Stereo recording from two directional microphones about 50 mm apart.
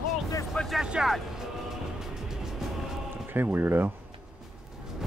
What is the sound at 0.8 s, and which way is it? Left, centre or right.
Speech, centre.